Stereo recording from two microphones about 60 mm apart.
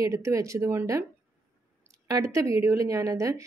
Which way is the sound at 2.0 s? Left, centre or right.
Right.